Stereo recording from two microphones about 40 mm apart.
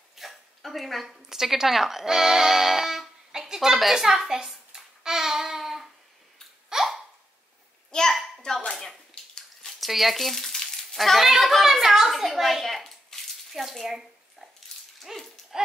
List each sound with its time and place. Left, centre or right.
0.1 s dog: centre
1.3 s speech: centre
6.7 s hiccup: centre
7.9 s a child's voice: centre
8.8 s bathtub: centre
9.7 s speech: centre
10.5 s frying: centre
11.0 s a child's voice: centre
13.5 s a sound: centre
15.1 s speech: centre